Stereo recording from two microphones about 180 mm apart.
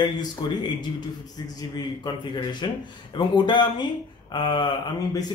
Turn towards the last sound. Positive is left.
turn(degrees=25)  # may be behind; listen again after turning